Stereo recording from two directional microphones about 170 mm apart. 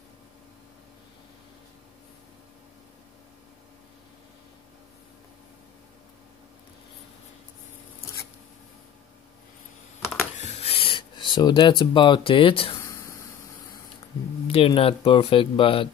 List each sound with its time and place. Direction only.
10.3 s writing: 40° left (ahead or behind)
12.8 s a sound: 15° left (ahead or behind)
14.5 s speech: 35° left (ahead or behind)